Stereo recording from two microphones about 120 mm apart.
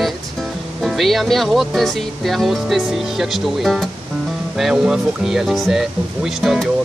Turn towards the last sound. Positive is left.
turn(degrees=0)  # may be behind; listen again after turning